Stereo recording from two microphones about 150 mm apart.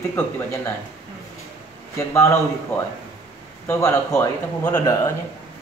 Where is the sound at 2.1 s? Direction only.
15° left (ahead or behind).